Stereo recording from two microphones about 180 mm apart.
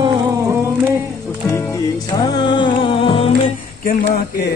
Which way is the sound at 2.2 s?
25° left (ahead or behind).